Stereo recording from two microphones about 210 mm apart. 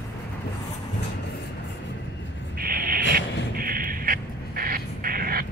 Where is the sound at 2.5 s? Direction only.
45° right (ahead or behind).